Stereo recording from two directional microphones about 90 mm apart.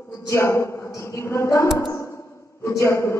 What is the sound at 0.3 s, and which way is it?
A man's voice, 30° left (ahead or behind).